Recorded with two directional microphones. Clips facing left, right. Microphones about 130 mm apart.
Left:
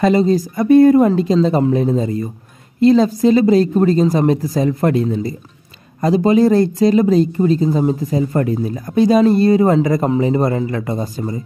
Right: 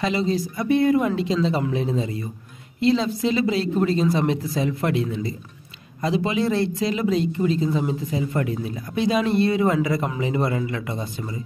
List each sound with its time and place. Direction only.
0.0 s a woman's voice: 45° left (ahead or behind)